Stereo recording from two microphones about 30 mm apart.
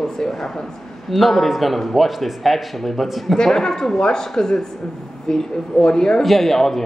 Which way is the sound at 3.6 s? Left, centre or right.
Centre.